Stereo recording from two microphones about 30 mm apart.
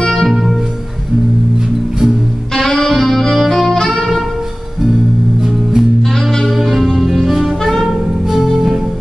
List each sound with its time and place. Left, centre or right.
2.5 s music: centre
5.4 s music: centre
6.5 s music: centre
8.5 s music: right